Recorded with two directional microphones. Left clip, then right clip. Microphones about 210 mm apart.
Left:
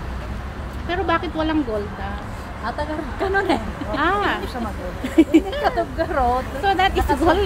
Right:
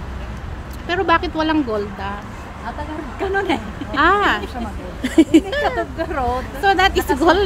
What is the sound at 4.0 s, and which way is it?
Speech, 35° right (ahead or behind).